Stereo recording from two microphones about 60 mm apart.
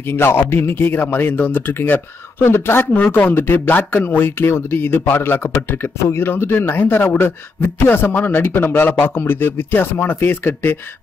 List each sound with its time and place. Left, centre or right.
0.1 s speech: left